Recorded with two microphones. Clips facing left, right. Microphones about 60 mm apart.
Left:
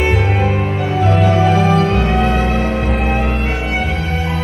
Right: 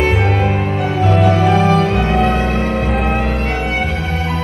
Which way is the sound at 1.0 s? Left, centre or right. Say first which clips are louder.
Even; centre.